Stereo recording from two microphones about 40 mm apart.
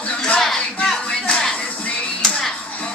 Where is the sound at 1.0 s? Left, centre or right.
Centre.